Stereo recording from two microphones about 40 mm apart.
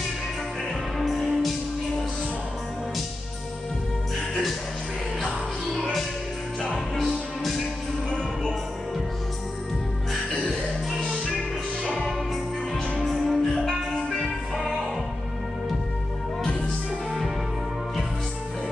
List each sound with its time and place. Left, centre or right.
0.9 s music: centre
8.1 s music: left
13.0 s music: centre
16.4 s music: left